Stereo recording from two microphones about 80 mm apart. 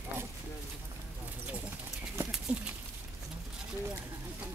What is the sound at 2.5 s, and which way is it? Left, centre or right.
Speech, centre.